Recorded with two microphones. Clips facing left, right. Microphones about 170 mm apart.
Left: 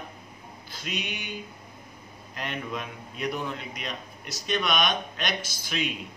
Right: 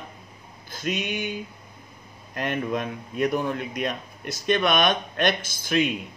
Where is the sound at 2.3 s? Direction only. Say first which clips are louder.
Right 7 dB; 50° right (ahead or behind).